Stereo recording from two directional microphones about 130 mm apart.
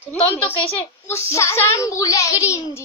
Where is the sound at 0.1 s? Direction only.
15° left (ahead or behind).